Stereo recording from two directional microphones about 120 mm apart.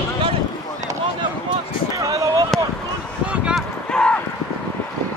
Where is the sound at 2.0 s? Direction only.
30° right (ahead or behind).